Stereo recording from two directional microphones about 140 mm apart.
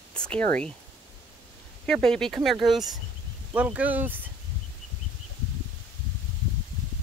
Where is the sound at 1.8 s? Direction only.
5° left (ahead or behind); by 4.2 s 15° right (ahead or behind).